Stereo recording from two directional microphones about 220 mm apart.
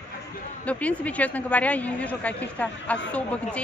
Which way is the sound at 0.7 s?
5° left (ahead or behind).